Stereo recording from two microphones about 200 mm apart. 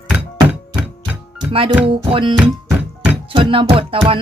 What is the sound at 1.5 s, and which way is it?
Speech, 30° right (ahead or behind).